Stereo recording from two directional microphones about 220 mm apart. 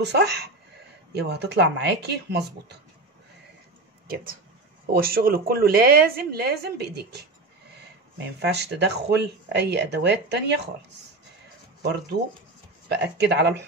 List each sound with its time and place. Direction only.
0.0 s a woman's voice: 50° right (ahead or behind)
4.1 s a woman's voice: 40° right (ahead or behind)
8.4 s a woman's voice: 50° right (ahead or behind)
11.8 s a woman's voice: 50° right (ahead or behind)